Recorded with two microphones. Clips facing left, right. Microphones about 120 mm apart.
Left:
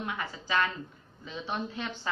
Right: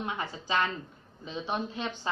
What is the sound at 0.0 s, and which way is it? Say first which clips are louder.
A woman's voice: right 1 dB; 25° right (ahead or behind).